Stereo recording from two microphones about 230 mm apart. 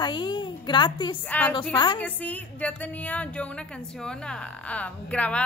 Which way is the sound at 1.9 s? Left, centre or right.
Centre.